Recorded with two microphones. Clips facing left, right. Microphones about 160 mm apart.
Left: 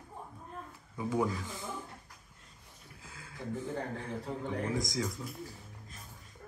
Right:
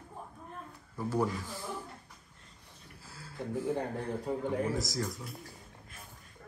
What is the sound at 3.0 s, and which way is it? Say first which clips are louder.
A man's voice: right 3 dB; 5° right (ahead or behind).